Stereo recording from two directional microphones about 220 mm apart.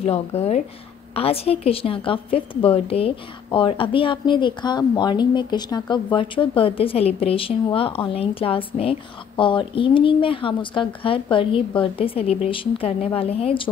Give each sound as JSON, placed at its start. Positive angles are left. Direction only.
{"t": 0.0, "sound": "speech", "side_deg": 25}